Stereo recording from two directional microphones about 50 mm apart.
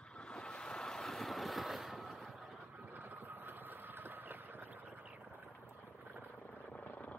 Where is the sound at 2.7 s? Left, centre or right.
Right.